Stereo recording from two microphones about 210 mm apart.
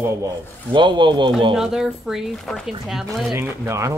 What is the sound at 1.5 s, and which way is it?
Speech, centre (ahead or behind).